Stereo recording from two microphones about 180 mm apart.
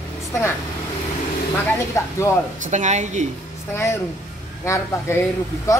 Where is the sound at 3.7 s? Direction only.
15° left (ahead or behind).